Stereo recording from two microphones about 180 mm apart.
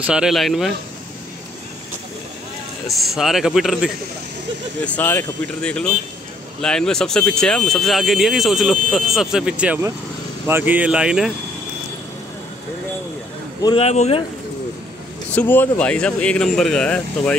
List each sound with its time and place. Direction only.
0.0 s speech: 5° right (ahead or behind)
2.9 s speech: centre (ahead or behind)
4.8 s speech: 10° left (ahead or behind)
13.6 s speech: 25° left (ahead or behind)
13.8 s speech: 35° left (ahead or behind)
15.3 s speech: 10° left (ahead or behind)